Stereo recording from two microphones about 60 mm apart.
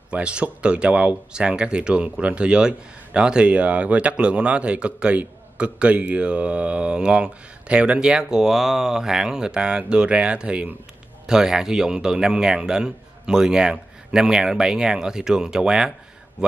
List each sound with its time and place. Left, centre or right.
0.1 s speech: centre